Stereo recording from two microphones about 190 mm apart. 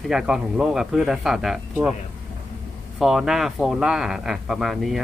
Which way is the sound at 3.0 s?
Centre (ahead or behind).